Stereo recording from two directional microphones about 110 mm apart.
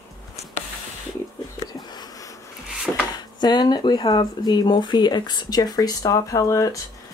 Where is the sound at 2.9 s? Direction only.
Centre (ahead or behind).